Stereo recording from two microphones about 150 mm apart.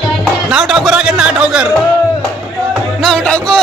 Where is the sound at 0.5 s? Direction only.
Centre (ahead or behind).